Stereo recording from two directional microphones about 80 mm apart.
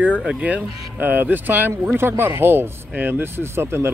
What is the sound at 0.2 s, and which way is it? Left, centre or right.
Speech, centre.